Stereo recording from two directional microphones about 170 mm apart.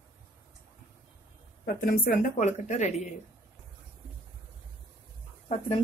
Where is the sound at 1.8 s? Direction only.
55° left (ahead or behind).